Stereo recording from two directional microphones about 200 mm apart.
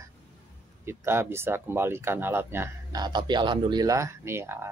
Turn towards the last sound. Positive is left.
turn(degrees=-10)  # may be behind; listen again after turning